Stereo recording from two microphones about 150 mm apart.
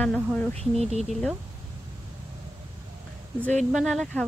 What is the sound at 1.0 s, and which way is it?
Speech, centre (ahead or behind).